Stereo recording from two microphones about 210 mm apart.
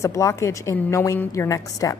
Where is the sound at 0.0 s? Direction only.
15° left (ahead or behind).